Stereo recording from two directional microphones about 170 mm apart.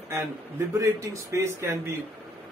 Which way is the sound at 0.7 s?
20° right (ahead or behind).